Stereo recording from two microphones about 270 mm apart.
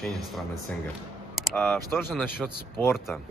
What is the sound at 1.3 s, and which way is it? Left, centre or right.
Computer keyboard, centre.